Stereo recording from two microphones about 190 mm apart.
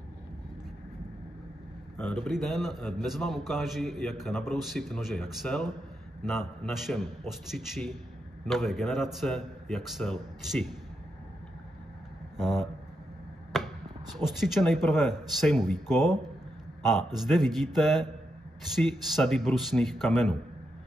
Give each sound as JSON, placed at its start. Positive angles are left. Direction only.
{"t": 2.2, "sound": "a man's voice", "side_deg": 0}
{"t": 12.4, "sound": "a man's voice", "side_deg": 0}
{"t": 13.5, "sound": "a sound", "side_deg": 0}
{"t": 14.1, "sound": "a man's voice", "side_deg": 0}